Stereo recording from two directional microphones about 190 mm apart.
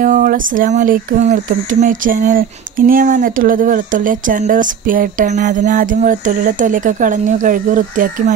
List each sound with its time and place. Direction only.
0.0 s speech: 45° right (ahead or behind)